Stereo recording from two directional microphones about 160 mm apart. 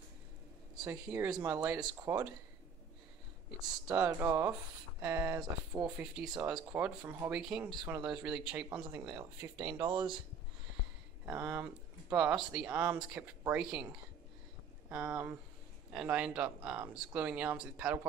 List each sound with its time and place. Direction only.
0.7 s speech: 15° right (ahead or behind)
3.8 s speech: 20° right (ahead or behind)
5.9 s speech: 5° right (ahead or behind)
9.8 s speech: 30° right (ahead or behind)
11.2 s speech: 10° right (ahead or behind)
14.9 s speech: 10° right (ahead or behind)